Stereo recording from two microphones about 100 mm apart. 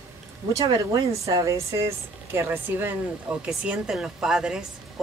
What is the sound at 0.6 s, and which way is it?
Speech, 35° right (ahead or behind).